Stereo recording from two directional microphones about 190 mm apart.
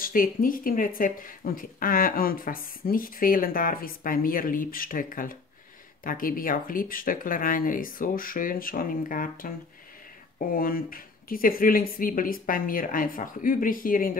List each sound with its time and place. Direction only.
0.0 s speech: 45° left (ahead or behind)
10.5 s speech: 50° left (ahead or behind)